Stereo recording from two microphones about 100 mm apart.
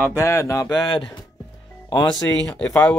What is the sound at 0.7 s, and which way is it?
Speech, 50° left (ahead or behind).